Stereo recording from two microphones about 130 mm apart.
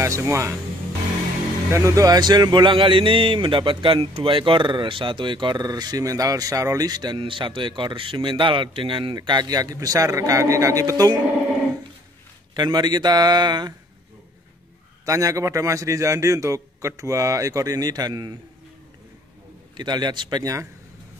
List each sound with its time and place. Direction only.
0.0 s a man's voice: 20° right (ahead or behind)
1.7 s a man's voice: 25° right (ahead or behind)
12.5 s a man's voice: 35° right (ahead or behind)
15.0 s a man's voice: 25° right (ahead or behind)
19.8 s a man's voice: 35° right (ahead or behind)